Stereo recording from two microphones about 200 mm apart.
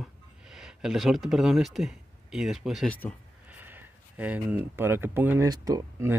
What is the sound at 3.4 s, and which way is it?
Speech, 10° right (ahead or behind).